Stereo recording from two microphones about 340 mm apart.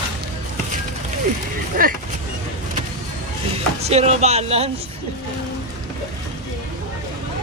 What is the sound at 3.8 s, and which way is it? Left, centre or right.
Speech, centre.